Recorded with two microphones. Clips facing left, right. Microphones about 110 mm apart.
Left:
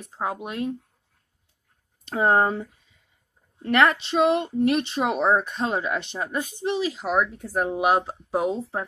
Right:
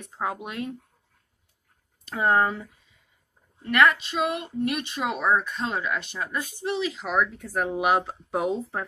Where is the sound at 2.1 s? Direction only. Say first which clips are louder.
Left 2 dB; 30° left (ahead or behind).